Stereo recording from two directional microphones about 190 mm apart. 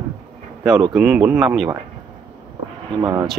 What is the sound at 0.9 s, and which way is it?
Speech, 5° right (ahead or behind).